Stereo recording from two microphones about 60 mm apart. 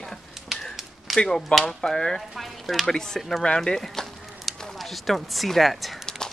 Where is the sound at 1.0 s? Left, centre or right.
Centre.